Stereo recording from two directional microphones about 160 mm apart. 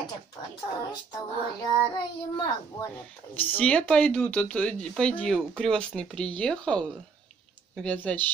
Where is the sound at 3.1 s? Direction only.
10° left (ahead or behind).